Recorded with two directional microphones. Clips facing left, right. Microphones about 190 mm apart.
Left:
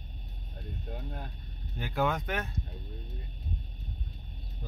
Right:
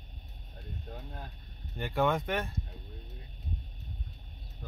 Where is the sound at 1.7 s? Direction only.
Centre (ahead or behind).